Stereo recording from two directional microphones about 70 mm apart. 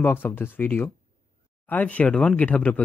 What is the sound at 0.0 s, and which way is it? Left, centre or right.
Speech, left.